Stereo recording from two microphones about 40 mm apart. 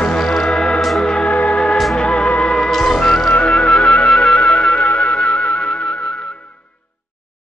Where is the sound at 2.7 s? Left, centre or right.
Centre.